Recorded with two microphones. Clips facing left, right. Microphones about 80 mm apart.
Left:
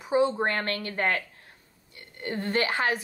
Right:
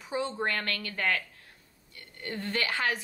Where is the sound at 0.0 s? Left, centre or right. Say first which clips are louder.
Left 7 dB; left.